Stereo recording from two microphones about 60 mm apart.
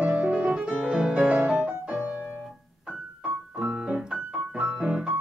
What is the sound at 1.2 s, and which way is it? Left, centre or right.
Music, right.